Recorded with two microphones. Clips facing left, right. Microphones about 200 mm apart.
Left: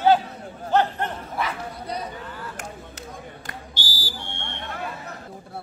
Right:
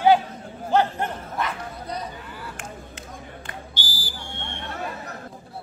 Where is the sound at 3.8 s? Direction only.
50° right (ahead or behind).